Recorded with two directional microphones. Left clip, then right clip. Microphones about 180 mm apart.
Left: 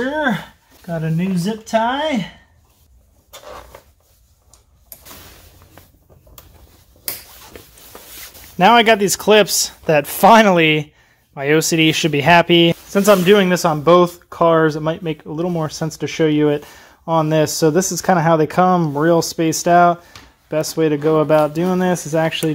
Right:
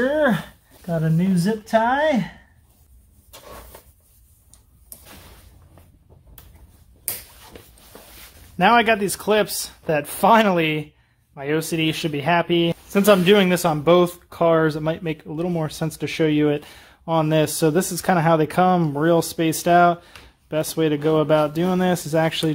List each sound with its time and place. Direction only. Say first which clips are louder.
0.8 s speech: even; 15° right (ahead or behind)
1.3 s speech: left 1 dB; 5° right (ahead or behind)
8.5 s speech: left 5 dB; 25° left (ahead or behind)
12.9 s speech: left 2 dB; centre (ahead or behind)